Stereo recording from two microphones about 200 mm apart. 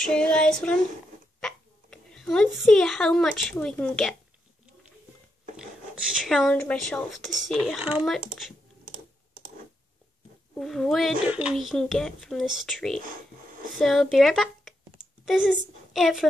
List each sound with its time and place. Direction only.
0.0 s a child's voice: 5° left (ahead or behind)
6.1 s a child's voice: centre (ahead or behind)
10.5 s a child's voice: centre (ahead or behind)